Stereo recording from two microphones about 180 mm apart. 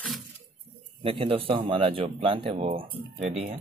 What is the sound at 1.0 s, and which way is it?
Speech, 30° right (ahead or behind).